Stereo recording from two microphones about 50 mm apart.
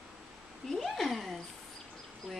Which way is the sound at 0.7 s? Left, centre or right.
Centre.